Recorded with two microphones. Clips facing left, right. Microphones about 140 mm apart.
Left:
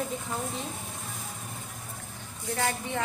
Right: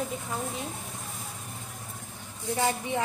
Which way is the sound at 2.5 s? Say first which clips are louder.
Right 2 dB; 15° right (ahead or behind).